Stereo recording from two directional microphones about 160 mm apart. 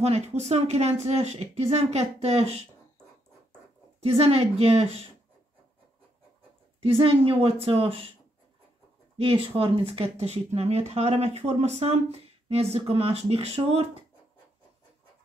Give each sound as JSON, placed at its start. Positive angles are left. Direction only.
{"t": 0.0, "sound": "speech", "side_deg": -40}
{"t": 4.0, "sound": "speech", "side_deg": -40}
{"t": 6.8, "sound": "speech", "side_deg": -35}
{"t": 9.3, "sound": "speech", "side_deg": -35}